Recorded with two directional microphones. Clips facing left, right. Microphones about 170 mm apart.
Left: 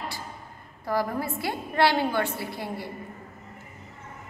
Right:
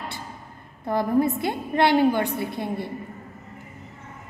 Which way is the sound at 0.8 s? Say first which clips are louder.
Right 6 dB; 20° right (ahead or behind).